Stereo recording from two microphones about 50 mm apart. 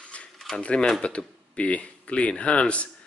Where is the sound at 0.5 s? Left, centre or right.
Centre.